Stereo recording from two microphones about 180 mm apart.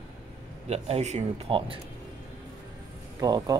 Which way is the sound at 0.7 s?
35° right (ahead or behind).